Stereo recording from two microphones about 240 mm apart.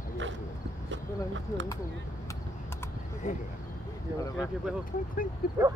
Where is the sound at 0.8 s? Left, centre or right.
Right.